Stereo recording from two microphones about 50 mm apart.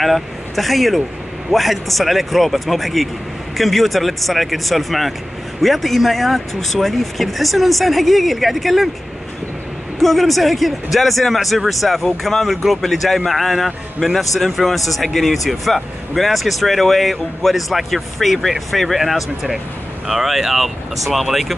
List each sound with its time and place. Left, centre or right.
0.0 s speech: centre
9.9 s speech: centre